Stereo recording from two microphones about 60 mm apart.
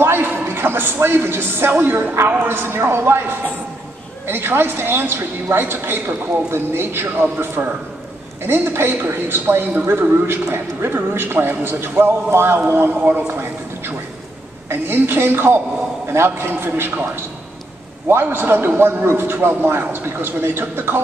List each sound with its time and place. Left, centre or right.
0.0 s a woman's voice: right
13.3 s a sound: right
14.7 s a woman's voice: right